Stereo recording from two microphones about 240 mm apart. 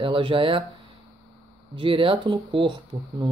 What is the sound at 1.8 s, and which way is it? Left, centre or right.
Speech, right.